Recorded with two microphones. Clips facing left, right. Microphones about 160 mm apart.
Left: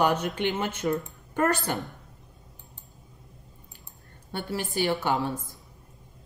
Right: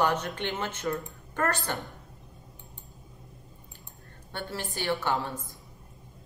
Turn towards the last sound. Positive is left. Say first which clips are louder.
# left 3 dB
turn(degrees=15)  # may be behind; listen again after turning